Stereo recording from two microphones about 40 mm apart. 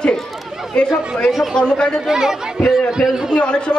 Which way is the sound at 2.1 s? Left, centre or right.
Centre.